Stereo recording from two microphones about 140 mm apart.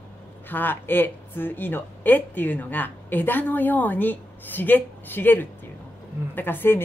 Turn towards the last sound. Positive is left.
turn(degrees=15)  # may be behind; listen again after turning